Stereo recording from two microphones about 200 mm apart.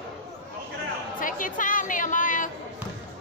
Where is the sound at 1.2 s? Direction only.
40° left (ahead or behind).